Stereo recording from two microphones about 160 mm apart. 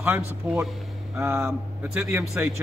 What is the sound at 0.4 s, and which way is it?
A man's voice, 10° right (ahead or behind).